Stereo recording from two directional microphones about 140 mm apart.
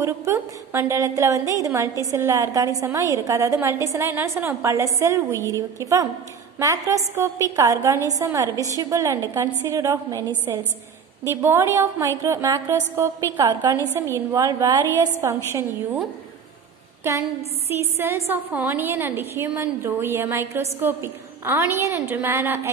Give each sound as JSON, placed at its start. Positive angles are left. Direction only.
{"t": 0.0, "sound": "a woman's voice", "side_deg": -20}
{"t": 17.0, "sound": "a woman's voice", "side_deg": -20}